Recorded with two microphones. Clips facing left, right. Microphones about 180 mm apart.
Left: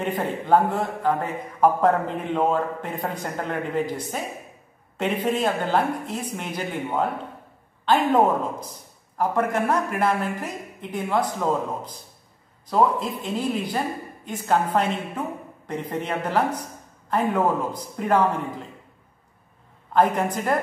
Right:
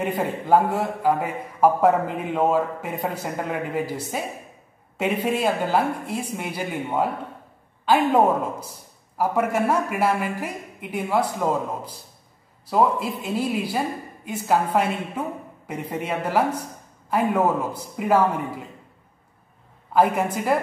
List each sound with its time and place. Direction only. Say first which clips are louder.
0.0 s a man's voice: right 1 dB; 10° right (ahead or behind)
9.2 s a man's voice: right 1 dB; 10° right (ahead or behind)
19.9 s a man's voice: right 1 dB; 10° right (ahead or behind)